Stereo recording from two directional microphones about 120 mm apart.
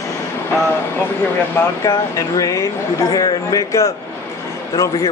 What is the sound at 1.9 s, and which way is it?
Speech, 30° left (ahead or behind).